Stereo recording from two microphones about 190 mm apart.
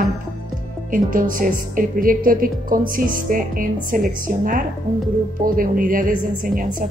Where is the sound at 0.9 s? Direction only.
45° right (ahead or behind).